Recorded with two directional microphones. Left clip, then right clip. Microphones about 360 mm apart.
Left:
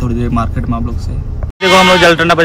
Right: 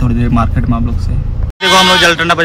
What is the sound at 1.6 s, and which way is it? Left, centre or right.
Speech, centre.